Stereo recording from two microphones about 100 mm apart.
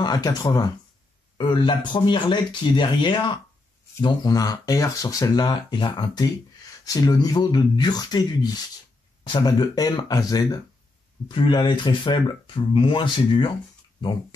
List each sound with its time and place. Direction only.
0.0 s speech: 45° left (ahead or behind)
11.2 s speech: 50° left (ahead or behind)